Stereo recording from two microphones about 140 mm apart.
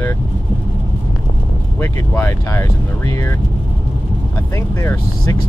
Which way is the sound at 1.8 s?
15° left (ahead or behind).